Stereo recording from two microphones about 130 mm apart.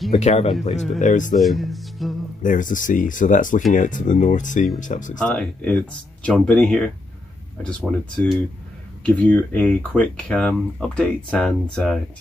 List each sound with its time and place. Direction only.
0.1 s speech: 60° left (ahead or behind)
0.9 s speech: 75° left (ahead or behind)
1.4 s speech: centre (ahead or behind)
2.4 s speech: 90° left
5.2 s speech: 10° left (ahead or behind)
8.2 s speech: 10° left (ahead or behind)